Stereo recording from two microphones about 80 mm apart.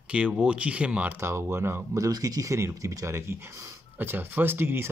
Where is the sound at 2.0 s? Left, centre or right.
Right.